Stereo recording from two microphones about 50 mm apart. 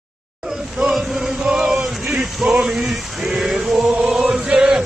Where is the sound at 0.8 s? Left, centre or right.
Centre.